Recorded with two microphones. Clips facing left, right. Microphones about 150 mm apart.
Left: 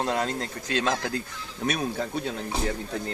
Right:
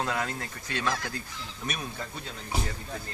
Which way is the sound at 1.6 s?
70° left (ahead or behind).